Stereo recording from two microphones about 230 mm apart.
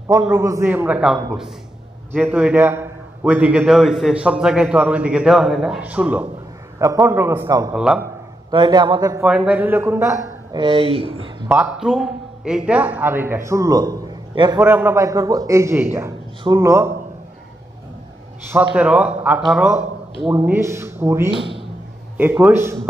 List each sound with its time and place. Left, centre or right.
0.1 s a man's voice: centre
7.7 s a man's voice: centre
8.5 s speech: centre
9.2 s a man's voice: centre; by 11.2 s right
11.4 s a man's voice: centre
18.8 s a man's voice: centre